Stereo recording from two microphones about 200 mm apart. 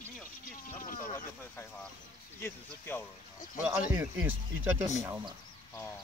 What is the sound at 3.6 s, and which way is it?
Speech, 10° right (ahead or behind).